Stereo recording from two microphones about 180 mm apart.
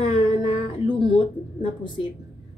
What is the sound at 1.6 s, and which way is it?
Speech, 25° left (ahead or behind).